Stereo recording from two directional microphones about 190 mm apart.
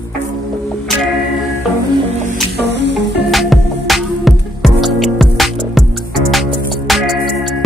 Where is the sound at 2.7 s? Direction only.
70° right (ahead or behind).